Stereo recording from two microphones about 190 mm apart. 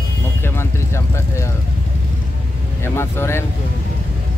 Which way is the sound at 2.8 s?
15° left (ahead or behind).